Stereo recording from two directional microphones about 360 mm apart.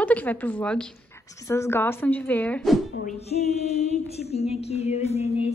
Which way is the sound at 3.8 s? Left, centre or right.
Centre.